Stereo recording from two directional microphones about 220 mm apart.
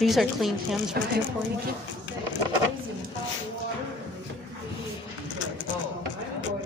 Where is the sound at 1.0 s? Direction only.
45° right (ahead or behind).